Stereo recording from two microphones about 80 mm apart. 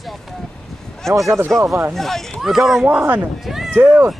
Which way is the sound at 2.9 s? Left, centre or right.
Right.